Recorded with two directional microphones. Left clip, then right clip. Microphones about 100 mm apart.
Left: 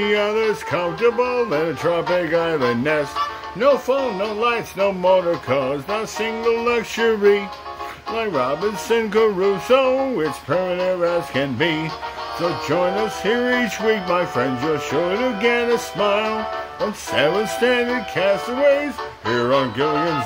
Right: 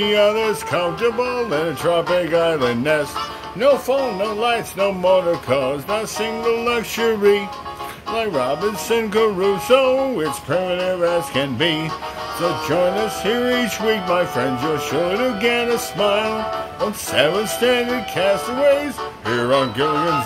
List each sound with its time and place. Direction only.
0.0 s speech: 25° left (ahead or behind)